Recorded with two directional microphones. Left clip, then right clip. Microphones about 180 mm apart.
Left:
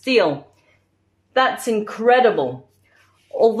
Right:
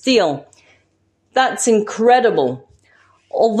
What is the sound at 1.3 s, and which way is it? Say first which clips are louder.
A woman's voice: right 3 dB; 50° right (ahead or behind).